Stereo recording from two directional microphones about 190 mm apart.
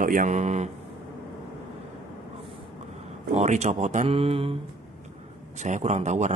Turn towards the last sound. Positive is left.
turn(degrees=-40)  # may be behind; listen again after turning